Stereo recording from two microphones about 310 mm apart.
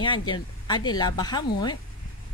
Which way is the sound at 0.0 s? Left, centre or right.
Centre.